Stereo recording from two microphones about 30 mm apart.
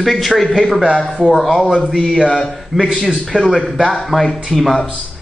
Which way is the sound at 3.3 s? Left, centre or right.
Right.